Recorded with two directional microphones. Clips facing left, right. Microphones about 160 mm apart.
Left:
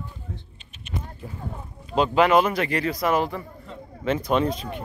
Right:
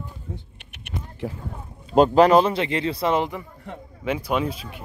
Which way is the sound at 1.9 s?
40° right (ahead or behind).